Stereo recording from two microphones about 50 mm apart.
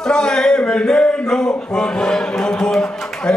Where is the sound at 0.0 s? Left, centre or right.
Centre.